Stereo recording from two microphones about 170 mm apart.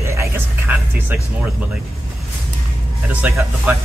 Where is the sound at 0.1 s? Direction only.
15° right (ahead or behind).